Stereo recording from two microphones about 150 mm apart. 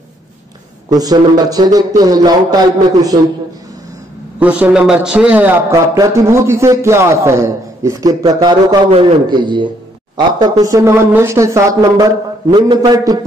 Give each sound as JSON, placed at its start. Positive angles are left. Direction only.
{"t": 0.8, "sound": "a man's voice", "side_deg": -25}
{"t": 4.4, "sound": "a man's voice", "side_deg": -10}
{"t": 10.6, "sound": "a man's voice", "side_deg": -20}